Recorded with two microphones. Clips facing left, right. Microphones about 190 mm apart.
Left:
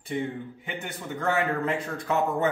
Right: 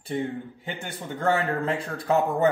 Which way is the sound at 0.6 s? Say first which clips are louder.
Right 1 dB; 30° right (ahead or behind).